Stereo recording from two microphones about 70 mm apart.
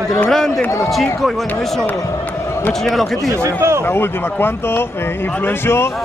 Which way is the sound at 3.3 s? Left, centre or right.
Right.